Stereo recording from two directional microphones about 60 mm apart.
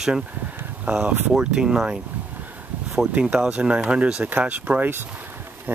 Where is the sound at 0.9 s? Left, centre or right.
Right.